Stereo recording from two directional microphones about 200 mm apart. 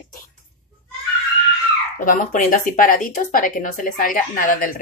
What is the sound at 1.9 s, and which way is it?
Speech, 40° left (ahead or behind).